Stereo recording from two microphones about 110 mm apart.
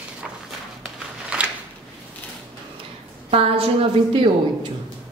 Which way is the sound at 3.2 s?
65° right (ahead or behind).